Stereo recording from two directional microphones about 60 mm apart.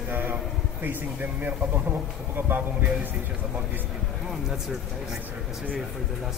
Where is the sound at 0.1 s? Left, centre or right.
Right.